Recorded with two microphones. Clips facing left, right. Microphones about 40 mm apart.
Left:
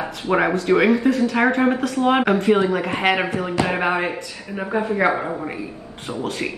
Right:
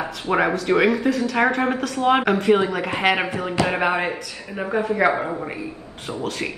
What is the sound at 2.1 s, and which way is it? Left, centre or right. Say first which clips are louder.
A man's voice: even; centre.